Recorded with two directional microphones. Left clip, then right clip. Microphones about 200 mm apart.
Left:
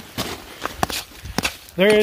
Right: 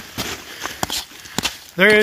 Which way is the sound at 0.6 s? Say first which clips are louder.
Left 1 dB; 30° left (ahead or behind).